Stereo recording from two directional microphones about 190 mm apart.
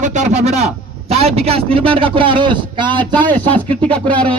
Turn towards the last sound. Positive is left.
turn(degrees=5)  # may be behind; listen again after turning